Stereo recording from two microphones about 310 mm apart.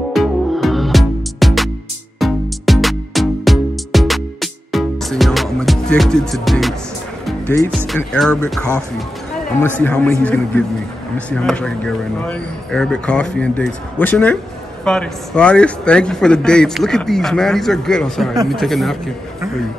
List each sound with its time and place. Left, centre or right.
0.1 s music: centre
7.2 s a man's voice: centre